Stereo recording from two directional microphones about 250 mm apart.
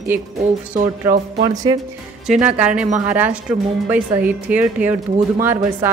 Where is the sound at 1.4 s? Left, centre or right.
Centre.